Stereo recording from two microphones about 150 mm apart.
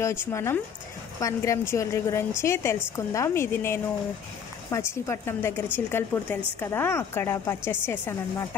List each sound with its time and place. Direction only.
0.0 s a woman's voice: 15° left (ahead or behind)